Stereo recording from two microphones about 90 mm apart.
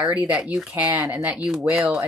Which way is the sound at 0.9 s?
30° right (ahead or behind).